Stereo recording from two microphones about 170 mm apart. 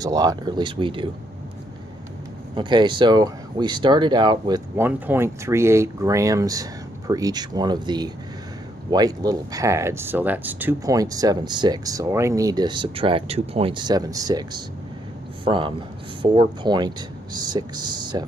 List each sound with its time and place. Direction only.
0.0 s speech: 20° right (ahead or behind)
2.5 s speech: 25° right (ahead or behind)
4.7 s speech: 10° right (ahead or behind)